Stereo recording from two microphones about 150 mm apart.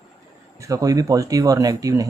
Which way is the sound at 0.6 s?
25° right (ahead or behind).